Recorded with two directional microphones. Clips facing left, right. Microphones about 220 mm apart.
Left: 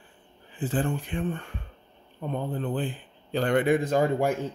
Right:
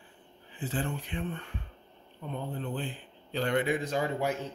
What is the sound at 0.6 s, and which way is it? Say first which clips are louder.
A man's voice: left 6 dB; 50° left (ahead or behind).